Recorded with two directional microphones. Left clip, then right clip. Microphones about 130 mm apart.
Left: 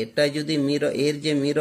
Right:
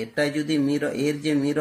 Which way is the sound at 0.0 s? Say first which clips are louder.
Left 2 dB; 45° left (ahead or behind).